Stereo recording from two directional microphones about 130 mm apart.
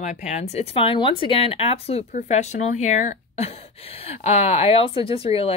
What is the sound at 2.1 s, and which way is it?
A woman's voice, 60° left (ahead or behind).